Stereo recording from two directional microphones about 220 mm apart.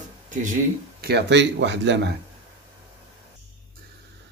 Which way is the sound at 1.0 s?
50° right (ahead or behind).